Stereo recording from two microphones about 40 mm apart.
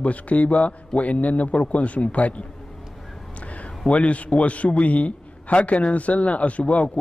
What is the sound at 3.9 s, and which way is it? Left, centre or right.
A man's voice, left.